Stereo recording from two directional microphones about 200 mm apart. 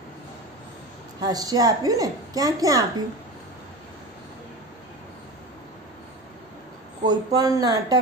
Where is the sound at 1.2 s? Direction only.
20° right (ahead or behind).